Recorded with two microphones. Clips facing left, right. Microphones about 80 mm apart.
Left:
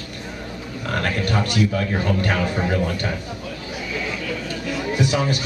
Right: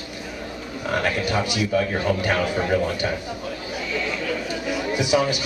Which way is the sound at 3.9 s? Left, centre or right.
Centre.